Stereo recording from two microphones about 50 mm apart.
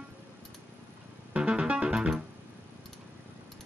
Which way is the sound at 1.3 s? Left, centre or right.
Right.